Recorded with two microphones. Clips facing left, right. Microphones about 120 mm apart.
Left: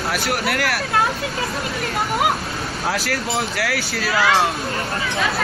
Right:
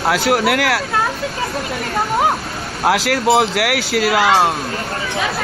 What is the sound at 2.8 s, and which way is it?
Speech, 80° right.